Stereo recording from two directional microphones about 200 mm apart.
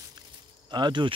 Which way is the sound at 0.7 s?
20° right (ahead or behind).